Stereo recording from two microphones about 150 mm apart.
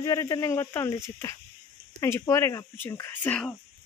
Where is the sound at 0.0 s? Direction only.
25° left (ahead or behind).